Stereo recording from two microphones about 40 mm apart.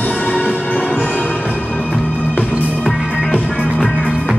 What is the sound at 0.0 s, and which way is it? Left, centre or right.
Music, left.